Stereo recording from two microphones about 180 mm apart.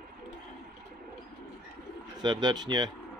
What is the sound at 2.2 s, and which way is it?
Speech, 25° right (ahead or behind).